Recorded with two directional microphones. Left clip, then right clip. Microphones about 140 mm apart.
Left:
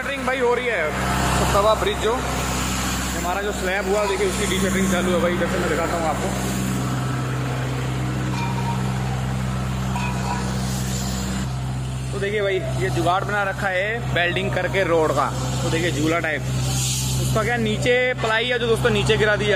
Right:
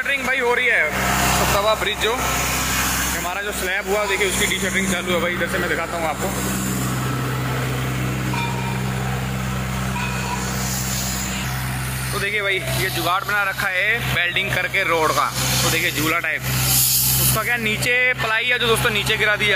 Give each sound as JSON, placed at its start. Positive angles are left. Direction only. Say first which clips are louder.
{"t": 0.1, "sound": "speech", "louder": "right 1 dB", "side_deg": 10}
{"t": 4.7, "sound": "speech", "louder": "right 1 dB", "side_deg": 0}
{"t": 13.1, "sound": "speech", "louder": "right 2 dB", "side_deg": 25}
{"t": 15.0, "sound": "speech", "louder": "even", "side_deg": 5}
{"t": 15.8, "sound": "speech", "louder": "right 1 dB", "side_deg": 20}
{"t": 17.4, "sound": "speech", "louder": "left 1 dB", "side_deg": 25}